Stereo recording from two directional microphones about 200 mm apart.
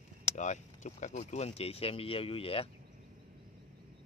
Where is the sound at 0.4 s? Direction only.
35° left (ahead or behind).